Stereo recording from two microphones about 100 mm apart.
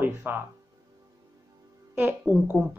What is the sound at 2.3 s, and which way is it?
Speech, centre (ahead or behind).